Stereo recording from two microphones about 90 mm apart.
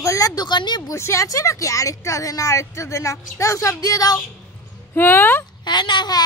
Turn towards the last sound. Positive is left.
turn(degrees=55)  # may be behind; listen again after turning